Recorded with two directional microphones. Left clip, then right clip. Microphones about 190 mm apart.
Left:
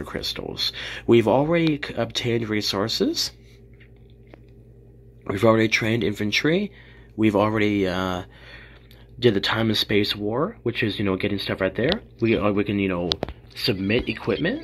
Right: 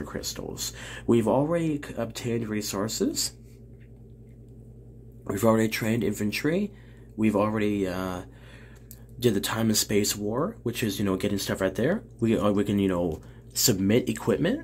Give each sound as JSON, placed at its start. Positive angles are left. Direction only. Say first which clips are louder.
{"t": 0.0, "sound": "speech", "louder": "left 5 dB", "side_deg": 15}
{"t": 5.2, "sound": "speech", "louder": "left 5 dB", "side_deg": 10}